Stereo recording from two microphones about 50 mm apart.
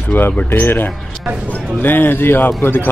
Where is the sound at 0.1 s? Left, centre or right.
Left.